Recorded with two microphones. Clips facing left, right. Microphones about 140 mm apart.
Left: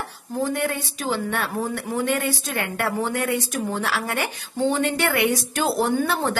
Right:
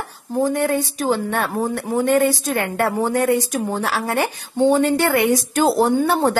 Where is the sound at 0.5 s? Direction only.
40° right (ahead or behind).